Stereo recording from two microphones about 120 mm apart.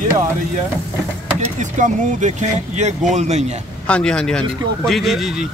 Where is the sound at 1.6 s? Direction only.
90° right.